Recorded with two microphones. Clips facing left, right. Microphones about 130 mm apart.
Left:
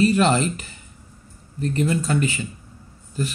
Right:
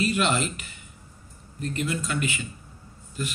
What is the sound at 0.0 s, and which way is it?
Speech, 35° left (ahead or behind).